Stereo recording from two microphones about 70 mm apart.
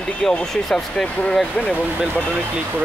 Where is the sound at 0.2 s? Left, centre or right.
Centre.